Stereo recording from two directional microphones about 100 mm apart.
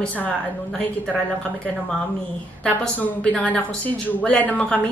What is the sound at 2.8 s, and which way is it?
Speech, 15° left (ahead or behind).